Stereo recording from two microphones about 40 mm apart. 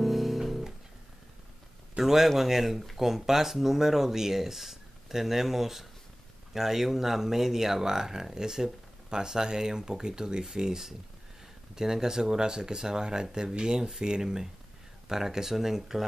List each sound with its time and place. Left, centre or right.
0.0 s music: centre
2.0 s speech: centre